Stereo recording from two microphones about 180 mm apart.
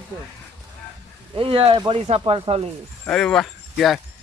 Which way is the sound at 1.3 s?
30° right (ahead or behind).